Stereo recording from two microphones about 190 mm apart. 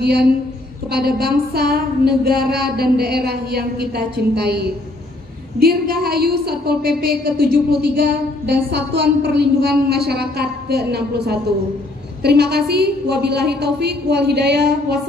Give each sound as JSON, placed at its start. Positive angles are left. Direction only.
{"t": 0.0, "sound": "a woman's voice", "side_deg": -60}